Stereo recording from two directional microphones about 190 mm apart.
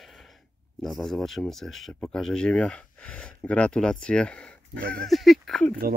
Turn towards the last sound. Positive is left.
turn(degrees=0)  # may be behind; listen again after turning